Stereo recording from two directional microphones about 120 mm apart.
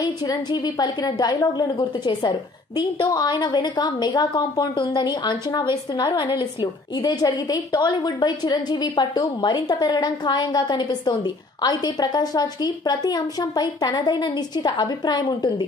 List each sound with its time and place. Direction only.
0.0 s a woman's voice: 35° left (ahead or behind)